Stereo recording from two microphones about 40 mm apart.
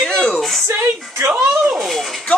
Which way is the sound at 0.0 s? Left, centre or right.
Left.